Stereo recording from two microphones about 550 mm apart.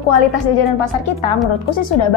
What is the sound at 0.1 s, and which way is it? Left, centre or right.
Speech, left.